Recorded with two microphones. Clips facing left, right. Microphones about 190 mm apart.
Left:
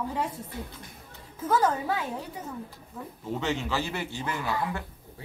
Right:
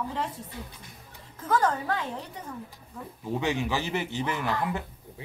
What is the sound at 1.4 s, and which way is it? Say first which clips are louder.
A woman's voice: left 1 dB; 10° left (ahead or behind).